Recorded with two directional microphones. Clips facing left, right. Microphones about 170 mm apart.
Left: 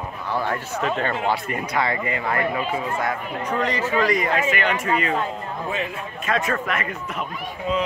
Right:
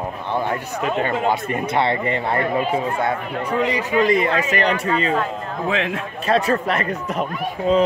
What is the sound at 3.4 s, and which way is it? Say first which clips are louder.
Speech: right 2 dB; 10° right (ahead or behind).